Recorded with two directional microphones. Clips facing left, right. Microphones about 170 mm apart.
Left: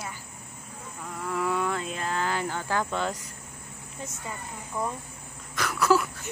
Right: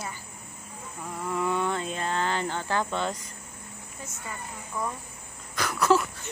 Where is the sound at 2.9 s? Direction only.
5° left (ahead or behind).